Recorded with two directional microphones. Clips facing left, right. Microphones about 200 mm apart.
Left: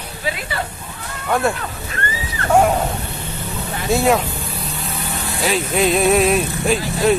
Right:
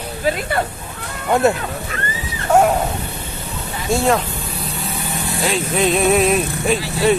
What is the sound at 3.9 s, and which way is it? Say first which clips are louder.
Speech: left 1 dB; 5° left (ahead or behind).